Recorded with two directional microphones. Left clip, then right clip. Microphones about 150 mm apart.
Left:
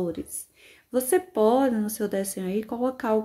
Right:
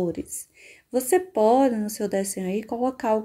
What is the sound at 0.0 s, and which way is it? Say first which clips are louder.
Speech: right 2 dB; 20° right (ahead or behind).